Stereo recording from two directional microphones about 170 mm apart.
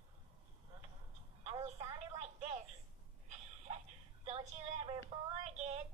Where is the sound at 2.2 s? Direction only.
40° right (ahead or behind).